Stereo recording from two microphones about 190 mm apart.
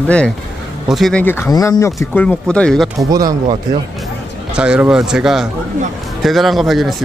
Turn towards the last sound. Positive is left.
turn(degrees=0)  # may be behind; listen again after turning